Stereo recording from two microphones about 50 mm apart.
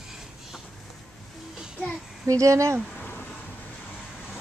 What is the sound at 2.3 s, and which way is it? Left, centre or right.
Speech, right.